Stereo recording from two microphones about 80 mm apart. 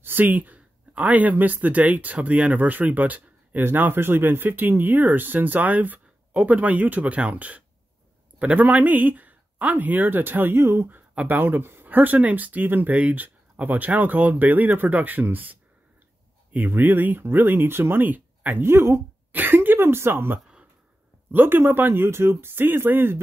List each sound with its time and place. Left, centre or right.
0.0 s speech: right
16.5 s speech: right